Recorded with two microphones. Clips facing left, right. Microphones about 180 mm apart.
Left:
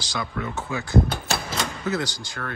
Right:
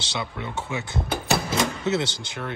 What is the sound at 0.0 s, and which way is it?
Speech, 25° right (ahead or behind).